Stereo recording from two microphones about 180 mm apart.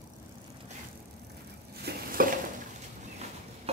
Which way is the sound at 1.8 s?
60° right (ahead or behind).